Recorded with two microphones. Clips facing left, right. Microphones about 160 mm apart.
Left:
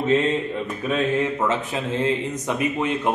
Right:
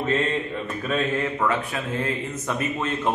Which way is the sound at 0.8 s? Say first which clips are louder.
Left 3 dB; 20° left (ahead or behind).